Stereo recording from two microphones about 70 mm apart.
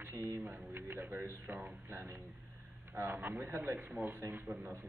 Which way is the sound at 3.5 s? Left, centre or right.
Right.